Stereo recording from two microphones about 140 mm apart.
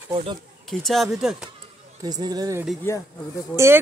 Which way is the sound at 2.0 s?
25° right (ahead or behind).